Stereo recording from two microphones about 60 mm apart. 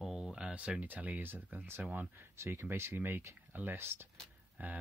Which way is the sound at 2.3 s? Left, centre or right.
Right.